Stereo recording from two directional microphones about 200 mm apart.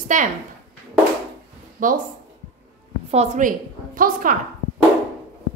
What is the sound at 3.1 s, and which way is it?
A woman's voice, 35° right (ahead or behind).